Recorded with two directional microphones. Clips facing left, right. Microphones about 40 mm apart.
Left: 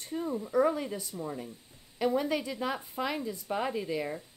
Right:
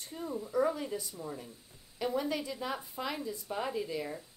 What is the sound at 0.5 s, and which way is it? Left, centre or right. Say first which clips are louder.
Speech: left 4 dB; left.